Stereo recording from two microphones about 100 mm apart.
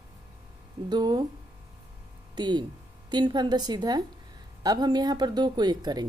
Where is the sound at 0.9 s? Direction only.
45° right (ahead or behind).